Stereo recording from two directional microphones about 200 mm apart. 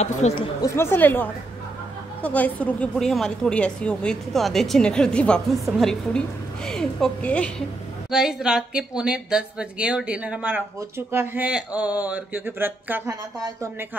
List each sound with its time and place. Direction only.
0.0 s speech: 35° left (ahead or behind)
0.6 s a woman's voice: 10° left (ahead or behind); by 13.8 s 15° right (ahead or behind)